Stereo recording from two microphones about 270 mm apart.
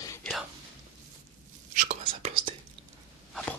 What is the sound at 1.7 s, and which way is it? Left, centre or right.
Whispering, right.